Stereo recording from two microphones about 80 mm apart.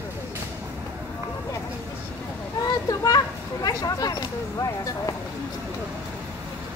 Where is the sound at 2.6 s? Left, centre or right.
Left.